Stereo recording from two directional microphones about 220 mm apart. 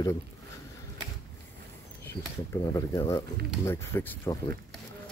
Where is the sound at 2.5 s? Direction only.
15° left (ahead or behind).